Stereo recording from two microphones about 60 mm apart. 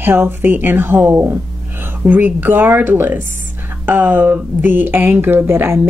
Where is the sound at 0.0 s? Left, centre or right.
Right.